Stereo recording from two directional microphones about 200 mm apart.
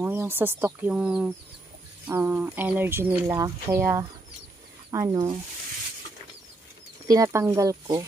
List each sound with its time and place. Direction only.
0.0 s speech: 10° right (ahead or behind)
7.1 s speech: 15° right (ahead or behind)